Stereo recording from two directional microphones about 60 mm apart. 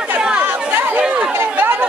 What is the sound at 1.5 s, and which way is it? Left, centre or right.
Chatter, right.